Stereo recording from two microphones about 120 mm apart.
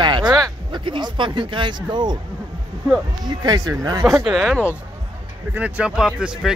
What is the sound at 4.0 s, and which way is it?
Speech, centre (ahead or behind).